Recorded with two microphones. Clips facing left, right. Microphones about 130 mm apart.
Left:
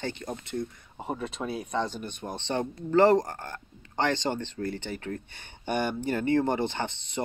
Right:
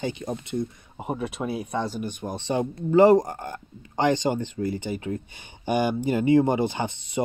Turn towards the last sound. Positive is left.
turn(degrees=-10)  # may be behind; listen again after turning